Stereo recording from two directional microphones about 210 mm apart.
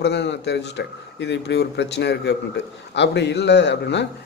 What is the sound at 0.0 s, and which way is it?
A man's voice, 55° left (ahead or behind).